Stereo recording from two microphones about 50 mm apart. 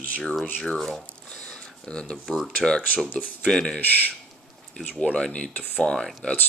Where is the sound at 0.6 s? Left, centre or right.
Centre.